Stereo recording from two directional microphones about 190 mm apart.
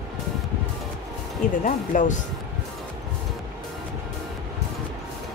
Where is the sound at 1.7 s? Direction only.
40° left (ahead or behind).